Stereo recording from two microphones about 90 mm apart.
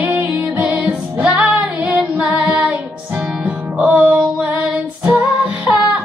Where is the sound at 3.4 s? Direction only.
15° right (ahead or behind).